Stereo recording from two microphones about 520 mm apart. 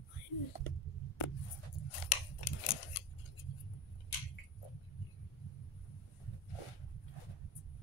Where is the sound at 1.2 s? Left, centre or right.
Left.